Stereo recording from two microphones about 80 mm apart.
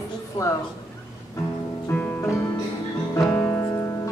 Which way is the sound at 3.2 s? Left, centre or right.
Left.